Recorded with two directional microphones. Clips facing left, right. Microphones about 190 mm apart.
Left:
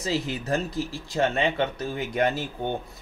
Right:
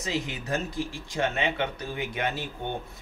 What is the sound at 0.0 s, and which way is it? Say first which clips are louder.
Speech: left 4 dB; 35° left (ahead or behind).